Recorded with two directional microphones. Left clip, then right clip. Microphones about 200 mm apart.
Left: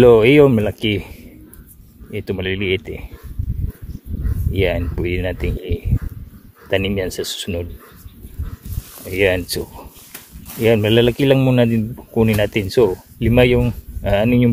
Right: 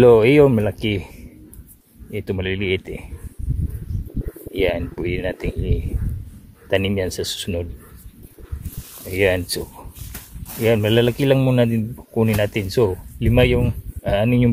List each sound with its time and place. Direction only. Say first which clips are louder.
0.0 s a man's voice: left 2 dB; 10° left (ahead or behind)
4.5 s speech: left 1 dB; 5° left (ahead or behind)
9.0 s a sound: left 2 dB; 10° left (ahead or behind)
10.6 s a man's voice: left 3 dB; 15° left (ahead or behind)